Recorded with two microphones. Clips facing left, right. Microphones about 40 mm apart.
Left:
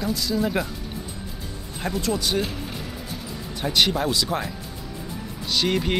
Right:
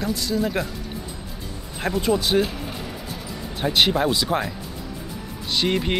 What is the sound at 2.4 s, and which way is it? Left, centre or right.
Music, centre.